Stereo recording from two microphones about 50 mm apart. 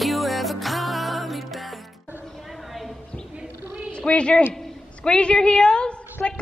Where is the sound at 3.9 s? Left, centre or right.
Left.